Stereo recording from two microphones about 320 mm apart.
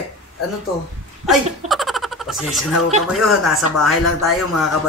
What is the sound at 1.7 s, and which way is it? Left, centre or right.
Speech, centre.